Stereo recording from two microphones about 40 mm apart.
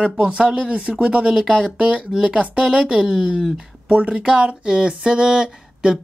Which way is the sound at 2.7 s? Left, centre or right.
Right.